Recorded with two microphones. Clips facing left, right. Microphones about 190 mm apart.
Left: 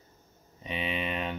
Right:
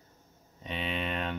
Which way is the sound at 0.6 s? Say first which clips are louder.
Left 1 dB; 5° left (ahead or behind).